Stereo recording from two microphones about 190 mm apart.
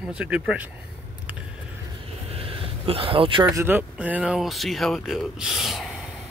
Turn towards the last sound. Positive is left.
turn(degrees=-5)  # may be behind; listen again after turning